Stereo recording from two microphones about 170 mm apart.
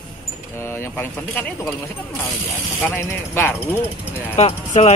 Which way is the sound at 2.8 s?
10° left (ahead or behind).